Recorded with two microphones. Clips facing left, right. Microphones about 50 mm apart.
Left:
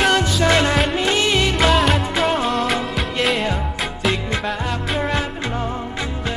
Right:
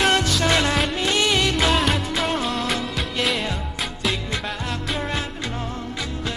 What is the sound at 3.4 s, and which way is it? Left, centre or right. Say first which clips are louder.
Music: left 5 dB; centre.